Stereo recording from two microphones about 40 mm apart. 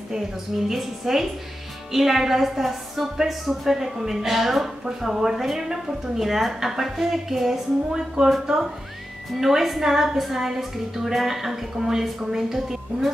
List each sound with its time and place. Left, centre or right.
0.7 s a woman's voice: centre
9.4 s a woman's voice: centre